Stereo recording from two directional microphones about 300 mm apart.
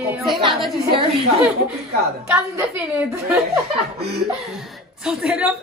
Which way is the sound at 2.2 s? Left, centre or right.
Centre.